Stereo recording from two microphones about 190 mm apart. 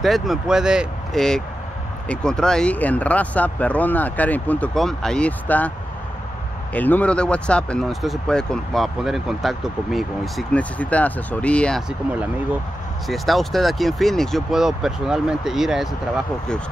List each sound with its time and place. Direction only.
0.0 s speech: centre (ahead or behind)
6.7 s speech: 10° left (ahead or behind)
13.1 s speech: centre (ahead or behind)